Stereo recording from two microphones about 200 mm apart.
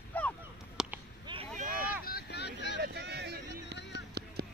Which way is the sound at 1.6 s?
45° right (ahead or behind).